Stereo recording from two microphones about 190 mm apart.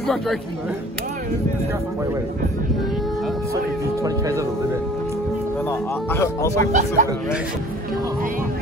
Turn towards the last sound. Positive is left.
turn(degrees=-40)  # may be behind; listen again after turning